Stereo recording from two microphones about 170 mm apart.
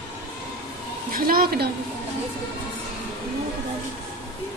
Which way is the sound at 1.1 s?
60° right (ahead or behind).